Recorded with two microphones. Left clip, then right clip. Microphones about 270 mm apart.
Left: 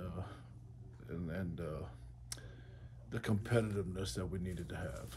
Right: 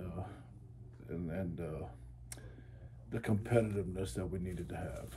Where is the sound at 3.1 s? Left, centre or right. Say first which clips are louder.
Right 3 dB; centre.